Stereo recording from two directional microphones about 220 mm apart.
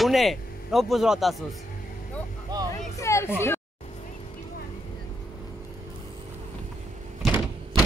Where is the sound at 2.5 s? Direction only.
20° right (ahead or behind).